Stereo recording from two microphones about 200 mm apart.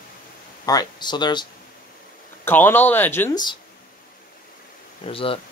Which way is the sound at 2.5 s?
10° left (ahead or behind).